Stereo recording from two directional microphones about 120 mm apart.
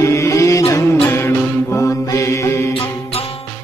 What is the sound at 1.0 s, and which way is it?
Mantra, 20° left (ahead or behind).